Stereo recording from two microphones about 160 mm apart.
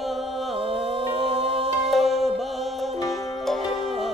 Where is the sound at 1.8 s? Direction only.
Centre (ahead or behind).